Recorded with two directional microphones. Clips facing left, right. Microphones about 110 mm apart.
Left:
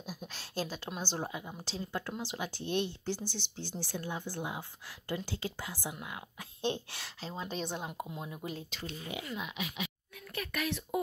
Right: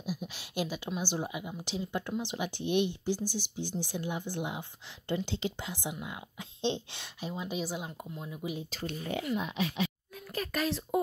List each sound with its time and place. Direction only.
0.0 s a sound: 10° right (ahead or behind)
0.9 s speech: 10° right (ahead or behind)
8.2 s speech: 10° left (ahead or behind)
9.4 s speech: 30° right (ahead or behind)